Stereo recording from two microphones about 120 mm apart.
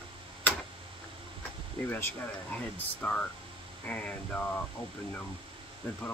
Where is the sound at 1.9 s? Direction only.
20° left (ahead or behind).